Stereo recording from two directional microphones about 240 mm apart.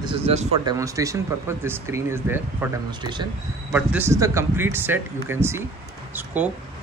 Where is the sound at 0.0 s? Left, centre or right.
Right.